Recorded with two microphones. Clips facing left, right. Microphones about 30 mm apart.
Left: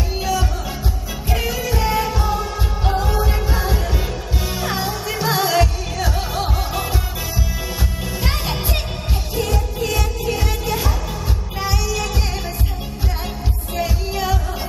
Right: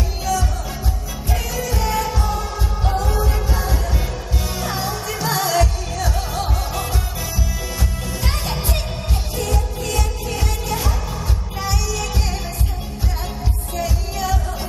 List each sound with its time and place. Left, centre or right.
0.2 s music: centre
9.4 s music: centre
13.7 s music: centre